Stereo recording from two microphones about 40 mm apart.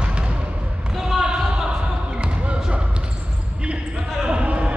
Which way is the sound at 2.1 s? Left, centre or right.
Right.